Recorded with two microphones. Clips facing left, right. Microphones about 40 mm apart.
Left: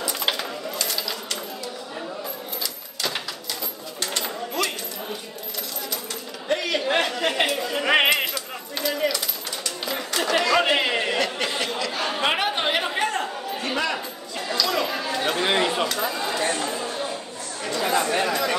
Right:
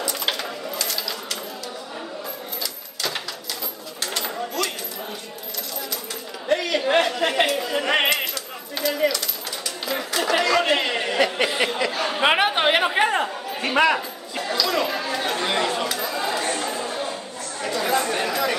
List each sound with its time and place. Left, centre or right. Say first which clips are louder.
0.0 s sewing machine: even; centre
4.0 s sewing machine: right 1 dB; centre
6.5 s chatter: right 3 dB; centre
8.7 s a sound: right 2 dB; centre
9.8 s chatter: right 2 dB; centre
11.1 s a sound: right 4 dB; centre
11.9 s speech: right 1 dB; centre
12.2 s chatter: right 5 dB; centre
15.4 s speech: left 2 dB; centre
16.2 s chatter: even; centre
17.6 s speech: even; centre